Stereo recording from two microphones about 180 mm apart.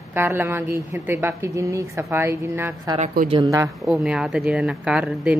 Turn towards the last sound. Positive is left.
turn(degrees=-5)  # may be behind; listen again after turning